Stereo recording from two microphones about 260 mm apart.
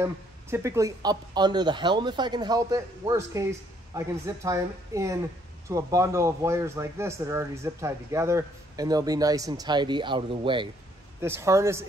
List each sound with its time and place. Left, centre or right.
0.0 s a man's voice: centre